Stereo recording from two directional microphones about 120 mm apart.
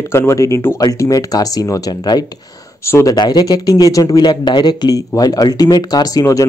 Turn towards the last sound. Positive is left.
turn(degrees=25)  # may be behind; listen again after turning